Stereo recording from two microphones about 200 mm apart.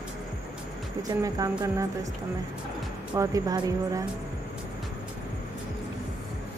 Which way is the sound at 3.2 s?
15° right (ahead or behind).